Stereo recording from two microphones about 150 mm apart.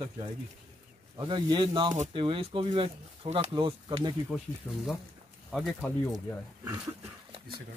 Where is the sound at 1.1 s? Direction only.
30° right (ahead or behind).